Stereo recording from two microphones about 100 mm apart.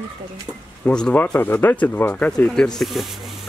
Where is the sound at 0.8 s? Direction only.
10° left (ahead or behind).